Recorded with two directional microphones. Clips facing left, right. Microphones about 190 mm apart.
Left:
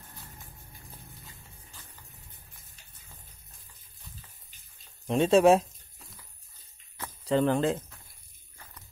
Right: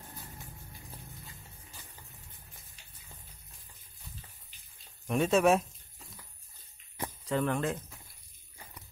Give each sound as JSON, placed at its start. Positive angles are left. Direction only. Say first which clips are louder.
{"t": 5.0, "sound": "speech", "louder": "left 5 dB", "side_deg": 25}
{"t": 7.2, "sound": "speech", "louder": "left 6 dB", "side_deg": 30}